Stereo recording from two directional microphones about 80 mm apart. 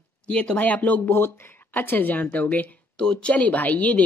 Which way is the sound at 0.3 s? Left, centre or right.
Centre.